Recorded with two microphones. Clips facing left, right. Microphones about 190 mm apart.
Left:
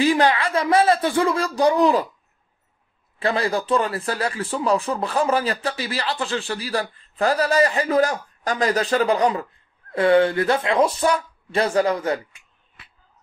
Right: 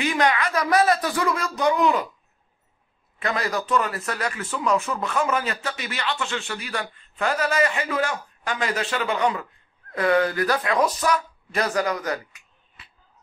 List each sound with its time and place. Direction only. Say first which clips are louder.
0.0 s a man's voice: left 4 dB; 30° left (ahead or behind)
3.2 s a man's voice: left 4 dB; 30° left (ahead or behind)